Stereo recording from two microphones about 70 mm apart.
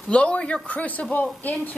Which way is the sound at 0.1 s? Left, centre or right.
Centre.